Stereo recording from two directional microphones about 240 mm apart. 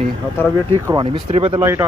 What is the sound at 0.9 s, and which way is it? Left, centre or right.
Speech, centre.